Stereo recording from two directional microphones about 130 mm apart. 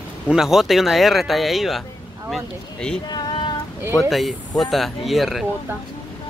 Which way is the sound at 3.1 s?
35° left (ahead or behind).